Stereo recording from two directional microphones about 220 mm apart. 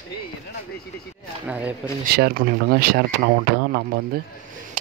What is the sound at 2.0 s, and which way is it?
Speech, 45° right (ahead or behind).